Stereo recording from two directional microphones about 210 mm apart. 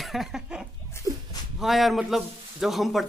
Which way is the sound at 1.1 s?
20° right (ahead or behind).